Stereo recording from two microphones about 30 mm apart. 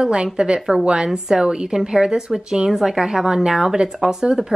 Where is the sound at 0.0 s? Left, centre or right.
Right.